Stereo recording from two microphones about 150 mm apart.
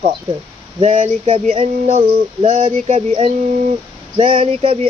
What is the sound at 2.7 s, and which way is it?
Speech, 50° right (ahead or behind).